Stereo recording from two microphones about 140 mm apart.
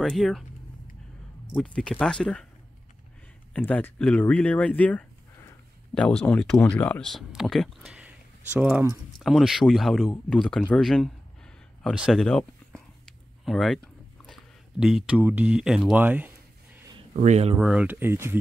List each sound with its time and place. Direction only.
0.0 s speech: 5° left (ahead or behind)
1.5 s speech: 5° left (ahead or behind)
3.5 s speech: 10° left (ahead or behind)
11.9 s a sound: centre (ahead or behind)
15.1 s speech: 10° right (ahead or behind)
17.1 s speech: 55° right (ahead or behind)
17.6 s speech: 10° right (ahead or behind)